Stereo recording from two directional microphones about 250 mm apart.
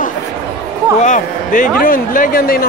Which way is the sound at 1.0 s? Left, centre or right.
Left.